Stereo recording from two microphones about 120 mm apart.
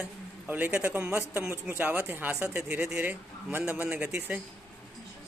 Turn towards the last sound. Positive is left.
turn(degrees=-10)  # may be behind; listen again after turning